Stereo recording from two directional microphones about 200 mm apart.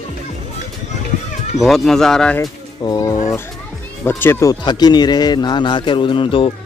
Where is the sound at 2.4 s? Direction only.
20° left (ahead or behind).